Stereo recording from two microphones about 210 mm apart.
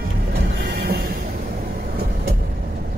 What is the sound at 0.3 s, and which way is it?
Music, 50° right (ahead or behind).